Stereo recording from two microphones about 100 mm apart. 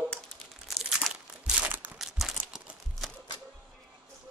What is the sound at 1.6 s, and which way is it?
Crumpling, 15° right (ahead or behind).